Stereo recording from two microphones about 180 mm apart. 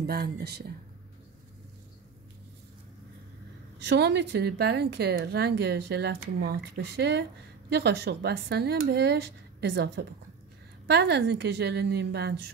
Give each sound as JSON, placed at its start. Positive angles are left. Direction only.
{"t": 0.0, "sound": "a woman's voice", "side_deg": -60}
{"t": 3.8, "sound": "a woman's voice", "side_deg": -70}